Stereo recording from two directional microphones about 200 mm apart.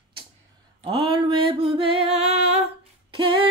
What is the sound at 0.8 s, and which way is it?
Music, 25° right (ahead or behind).